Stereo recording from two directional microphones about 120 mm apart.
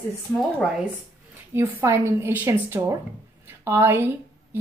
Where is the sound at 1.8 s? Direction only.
20° right (ahead or behind).